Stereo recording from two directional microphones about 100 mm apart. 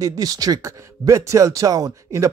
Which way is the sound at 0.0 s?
35° right (ahead or behind).